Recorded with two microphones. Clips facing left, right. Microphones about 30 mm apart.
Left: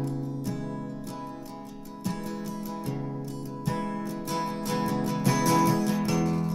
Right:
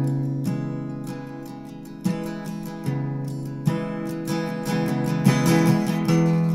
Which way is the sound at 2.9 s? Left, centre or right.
Right.